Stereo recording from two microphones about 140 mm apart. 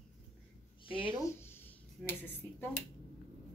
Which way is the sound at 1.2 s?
15° left (ahead or behind).